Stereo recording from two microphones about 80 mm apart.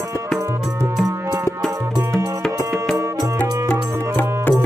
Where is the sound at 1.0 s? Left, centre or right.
Right.